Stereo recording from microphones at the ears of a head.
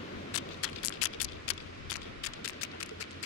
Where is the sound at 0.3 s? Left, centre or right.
Left.